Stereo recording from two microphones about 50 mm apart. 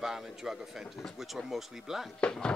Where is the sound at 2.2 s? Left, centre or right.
Centre.